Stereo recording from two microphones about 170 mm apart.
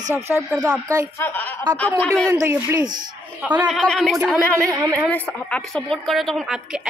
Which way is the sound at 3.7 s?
5° left (ahead or behind).